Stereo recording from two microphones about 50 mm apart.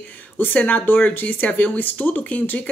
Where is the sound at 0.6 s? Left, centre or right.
Left.